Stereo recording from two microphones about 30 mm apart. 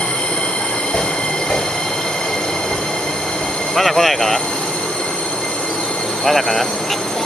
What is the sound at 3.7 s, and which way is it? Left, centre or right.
Speech, centre.